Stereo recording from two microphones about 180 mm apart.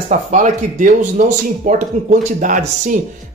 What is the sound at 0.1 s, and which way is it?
Speech, 45° right (ahead or behind).